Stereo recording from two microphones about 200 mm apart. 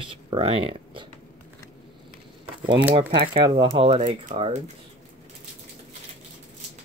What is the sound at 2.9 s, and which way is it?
Speech, 25° right (ahead or behind).